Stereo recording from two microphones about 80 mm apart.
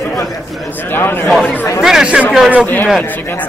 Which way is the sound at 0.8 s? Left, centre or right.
Left.